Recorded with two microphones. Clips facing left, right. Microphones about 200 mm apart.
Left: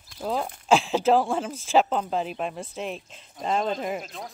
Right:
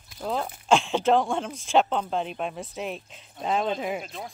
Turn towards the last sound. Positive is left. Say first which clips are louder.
# even
turn(degrees=0)  # may be behind; listen again after turning